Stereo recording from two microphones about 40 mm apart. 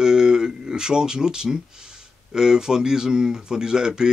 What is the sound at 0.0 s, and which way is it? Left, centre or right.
Speech, centre.